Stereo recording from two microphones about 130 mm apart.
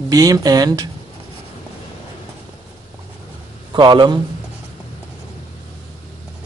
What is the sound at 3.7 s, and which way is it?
Speech, 35° right (ahead or behind).